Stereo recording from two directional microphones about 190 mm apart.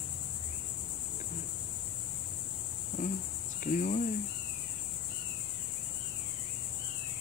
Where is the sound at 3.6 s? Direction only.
45° left (ahead or behind).